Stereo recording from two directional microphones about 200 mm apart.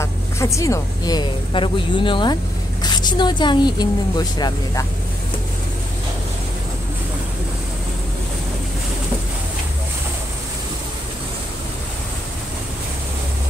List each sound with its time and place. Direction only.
0.0 s speech: 15° left (ahead or behind)